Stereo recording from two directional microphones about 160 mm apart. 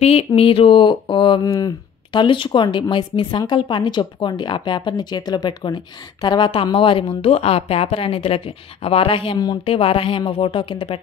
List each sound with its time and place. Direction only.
0.0 s a woman's voice: 40° left (ahead or behind)